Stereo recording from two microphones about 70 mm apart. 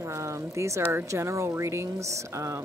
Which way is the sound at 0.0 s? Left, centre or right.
Right.